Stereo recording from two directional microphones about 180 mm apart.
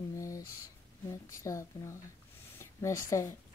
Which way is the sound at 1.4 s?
15° left (ahead or behind).